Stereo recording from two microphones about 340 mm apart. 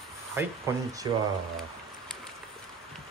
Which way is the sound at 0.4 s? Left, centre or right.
Centre.